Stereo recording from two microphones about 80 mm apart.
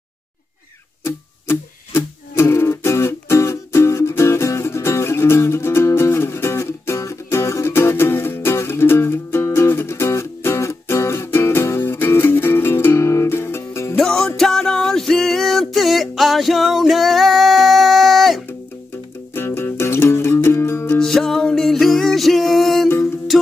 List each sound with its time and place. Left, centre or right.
1.0 s music: left
13.9 s music: centre
19.3 s music: left
21.0 s music: centre